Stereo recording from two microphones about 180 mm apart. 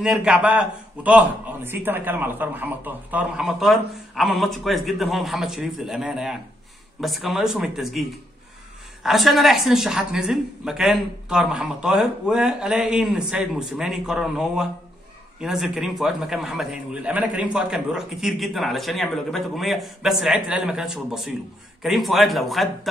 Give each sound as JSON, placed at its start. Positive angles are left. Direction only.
{"t": 0.0, "sound": "a man's voice", "side_deg": -5}
{"t": 9.0, "sound": "a man's voice", "side_deg": 0}